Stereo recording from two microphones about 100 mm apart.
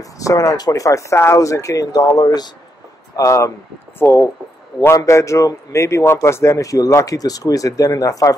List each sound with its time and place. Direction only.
0.0 s a man's voice: 35° left (ahead or behind)